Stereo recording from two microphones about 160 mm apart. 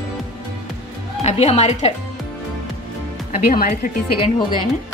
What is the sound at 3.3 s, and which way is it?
Speech, 60° left (ahead or behind).